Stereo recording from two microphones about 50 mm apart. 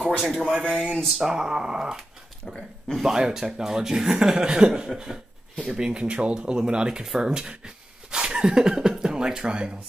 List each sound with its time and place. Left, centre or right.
0.0 s speech: centre
1.3 s speech: centre